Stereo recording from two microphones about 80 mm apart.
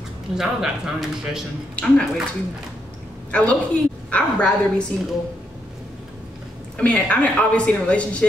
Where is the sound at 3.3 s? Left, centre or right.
Centre.